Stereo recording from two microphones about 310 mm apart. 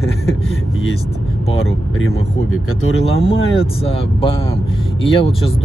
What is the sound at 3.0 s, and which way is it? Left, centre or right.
Speech, centre.